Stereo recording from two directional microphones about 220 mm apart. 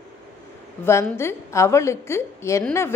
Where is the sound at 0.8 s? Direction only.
10° left (ahead or behind).